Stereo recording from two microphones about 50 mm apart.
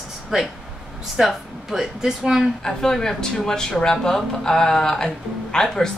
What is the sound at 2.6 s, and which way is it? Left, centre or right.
Speech, centre.